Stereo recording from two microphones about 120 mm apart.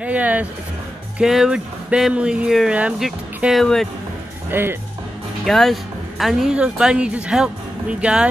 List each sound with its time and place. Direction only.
0.0 s speech: 10° right (ahead or behind)
4.5 s speech: 20° right (ahead or behind)
5.4 s speech: centre (ahead or behind)